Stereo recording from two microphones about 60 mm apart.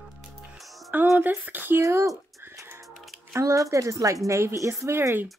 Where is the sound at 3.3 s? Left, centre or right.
Right.